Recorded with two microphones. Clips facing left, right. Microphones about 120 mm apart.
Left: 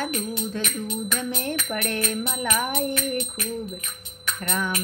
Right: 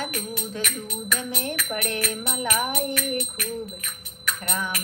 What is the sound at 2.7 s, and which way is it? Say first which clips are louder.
Music: left 1 dB; 25° left (ahead or behind).